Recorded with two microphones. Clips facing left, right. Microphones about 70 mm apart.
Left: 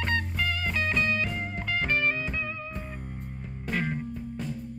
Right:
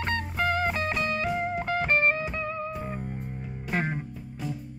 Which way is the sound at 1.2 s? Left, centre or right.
Right.